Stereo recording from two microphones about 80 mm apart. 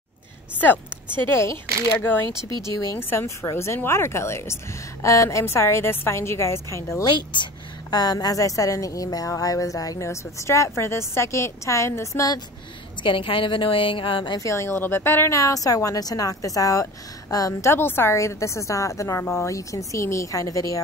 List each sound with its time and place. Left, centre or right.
0.6 s a woman's voice: left
7.1 s speech: left
7.9 s speech: left
13.0 s a woman's voice: left
14.4 s speech: left
15.3 s a woman's voice: left